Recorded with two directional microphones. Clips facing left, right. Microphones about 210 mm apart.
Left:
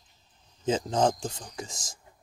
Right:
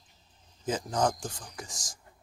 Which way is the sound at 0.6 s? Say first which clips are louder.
Left 4 dB; 25° left (ahead or behind).